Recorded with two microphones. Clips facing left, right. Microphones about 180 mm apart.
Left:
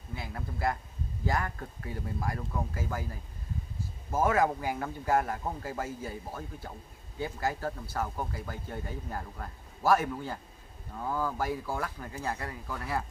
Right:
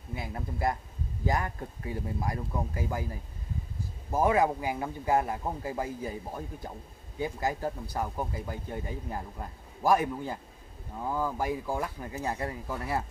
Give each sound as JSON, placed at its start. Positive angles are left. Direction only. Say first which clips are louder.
{"t": 0.1, "sound": "speech", "louder": "right 3 dB", "side_deg": -20}
{"t": 4.1, "sound": "speech", "louder": "right 2 dB", "side_deg": -15}